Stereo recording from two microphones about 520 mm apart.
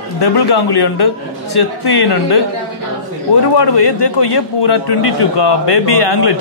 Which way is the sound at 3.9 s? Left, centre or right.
Left.